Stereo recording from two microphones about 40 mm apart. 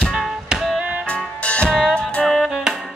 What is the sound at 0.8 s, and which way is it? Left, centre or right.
Music, right.